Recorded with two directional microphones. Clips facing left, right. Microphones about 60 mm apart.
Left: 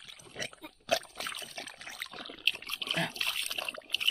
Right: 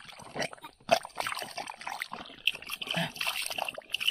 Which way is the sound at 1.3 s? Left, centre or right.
Right.